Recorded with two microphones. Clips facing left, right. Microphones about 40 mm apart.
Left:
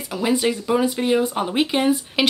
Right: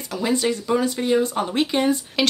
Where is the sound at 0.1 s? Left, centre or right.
Centre.